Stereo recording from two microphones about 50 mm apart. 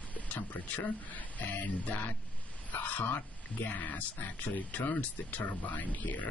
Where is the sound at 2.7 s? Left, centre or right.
Left.